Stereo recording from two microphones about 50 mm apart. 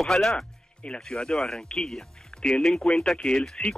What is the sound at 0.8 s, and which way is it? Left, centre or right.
Speech, left.